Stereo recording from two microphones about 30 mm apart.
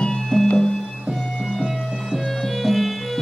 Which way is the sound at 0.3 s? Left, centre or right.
Left.